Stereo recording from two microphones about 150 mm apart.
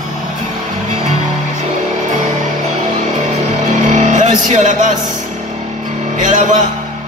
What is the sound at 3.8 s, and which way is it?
Vehicle, 55° right (ahead or behind).